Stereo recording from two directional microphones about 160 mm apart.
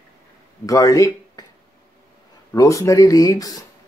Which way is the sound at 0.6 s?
20° left (ahead or behind).